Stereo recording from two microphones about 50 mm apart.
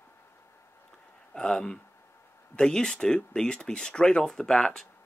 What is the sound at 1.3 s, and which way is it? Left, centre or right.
Speech, centre.